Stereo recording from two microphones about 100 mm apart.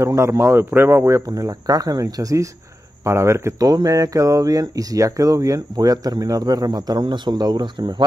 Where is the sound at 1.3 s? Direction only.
40° right (ahead or behind).